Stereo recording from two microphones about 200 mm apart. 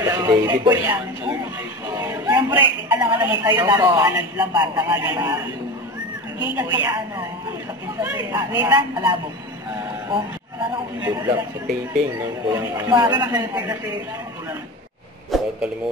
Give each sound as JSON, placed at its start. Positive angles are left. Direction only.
{"t": 0.0, "sound": "a woman's voice", "side_deg": -15}
{"t": 6.5, "sound": "a woman's voice", "side_deg": -10}
{"t": 11.0, "sound": "a woman's voice", "side_deg": -15}
{"t": 12.4, "sound": "a woman's voice", "side_deg": -15}
{"t": 15.3, "sound": "speech", "side_deg": 0}